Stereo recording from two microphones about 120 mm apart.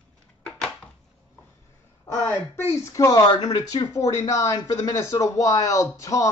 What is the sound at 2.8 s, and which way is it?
Speech, 25° left (ahead or behind).